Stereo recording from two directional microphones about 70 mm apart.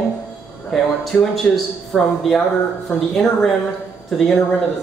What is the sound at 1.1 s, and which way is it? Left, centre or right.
Speech, left.